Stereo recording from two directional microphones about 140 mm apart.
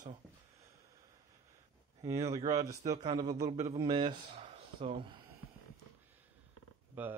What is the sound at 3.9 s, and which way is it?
Speech, 35° right (ahead or behind).